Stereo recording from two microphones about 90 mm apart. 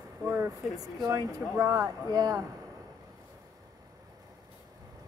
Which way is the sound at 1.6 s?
40° right (ahead or behind).